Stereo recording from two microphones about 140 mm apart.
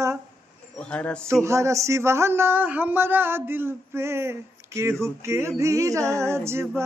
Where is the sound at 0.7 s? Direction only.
10° left (ahead or behind).